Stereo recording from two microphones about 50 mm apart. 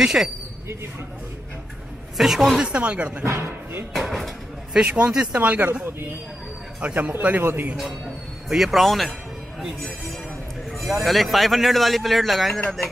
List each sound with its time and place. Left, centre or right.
0.0 s a woman's voice: centre
2.1 s a woman's voice: centre
2.6 s speech: right
3.3 s speech: right
3.9 s speech: centre
4.7 s speech: centre
5.3 s a man's voice: right
6.8 s a man's voice: right
8.5 s speech: centre
11.0 s speech: centre